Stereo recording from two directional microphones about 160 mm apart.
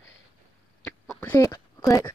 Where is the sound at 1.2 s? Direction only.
20° left (ahead or behind).